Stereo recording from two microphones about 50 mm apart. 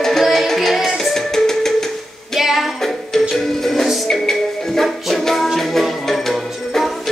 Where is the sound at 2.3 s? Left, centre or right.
Centre.